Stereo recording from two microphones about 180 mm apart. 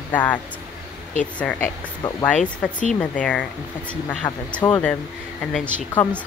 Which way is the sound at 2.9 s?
5° left (ahead or behind).